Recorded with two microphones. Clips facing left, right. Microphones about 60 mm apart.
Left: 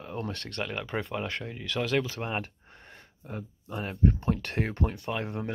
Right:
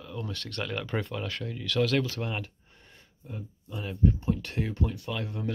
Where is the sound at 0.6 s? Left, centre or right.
Centre.